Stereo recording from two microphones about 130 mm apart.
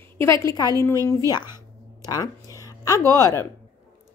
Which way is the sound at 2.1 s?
25° left (ahead or behind).